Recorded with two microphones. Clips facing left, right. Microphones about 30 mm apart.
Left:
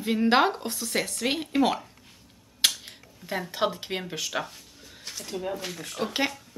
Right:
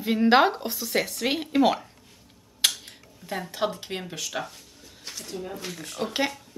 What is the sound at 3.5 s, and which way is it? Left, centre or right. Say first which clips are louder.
Speech: left 1 dB; centre.